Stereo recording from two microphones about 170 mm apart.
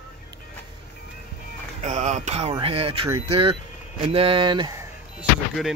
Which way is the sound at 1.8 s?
45° right (ahead or behind).